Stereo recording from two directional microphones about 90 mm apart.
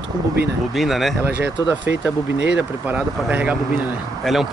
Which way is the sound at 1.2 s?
20° right (ahead or behind).